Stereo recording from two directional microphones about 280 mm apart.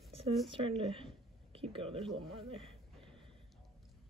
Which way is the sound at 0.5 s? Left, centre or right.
Centre.